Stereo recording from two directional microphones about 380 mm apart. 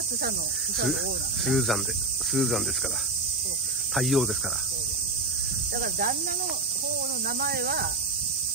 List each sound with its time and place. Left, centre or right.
1.4 s cricket: centre
3.9 s cricket: centre
5.8 s cricket: right
7.2 s cricket: right